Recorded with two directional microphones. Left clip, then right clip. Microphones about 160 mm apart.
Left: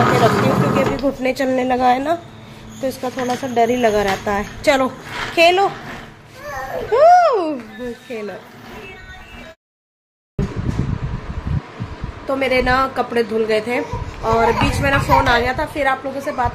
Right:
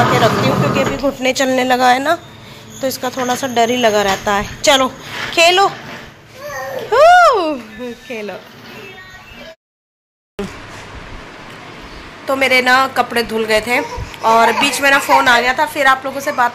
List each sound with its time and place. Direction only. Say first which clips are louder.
0.1 s a woman's voice: right 2 dB; 5° left (ahead or behind)
3.2 s speech: right 4 dB; 20° right (ahead or behind)
3.5 s a woman's voice: right 2 dB; 5° left (ahead or behind)
6.9 s speech: right 3 dB; 5° left (ahead or behind)
12.3 s speech: right 5 dB; 5° left (ahead or behind)